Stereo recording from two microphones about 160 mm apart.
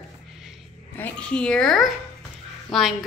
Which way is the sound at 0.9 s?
10° left (ahead or behind).